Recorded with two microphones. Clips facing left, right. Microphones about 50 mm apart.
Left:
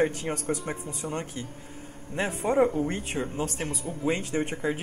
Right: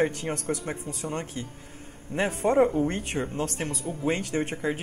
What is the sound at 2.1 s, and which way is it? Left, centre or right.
Speech, centre.